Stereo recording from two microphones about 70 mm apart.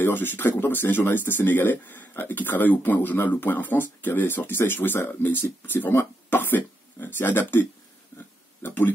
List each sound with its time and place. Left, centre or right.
0.0 s speech: left
8.1 s pig: left
8.6 s speech: left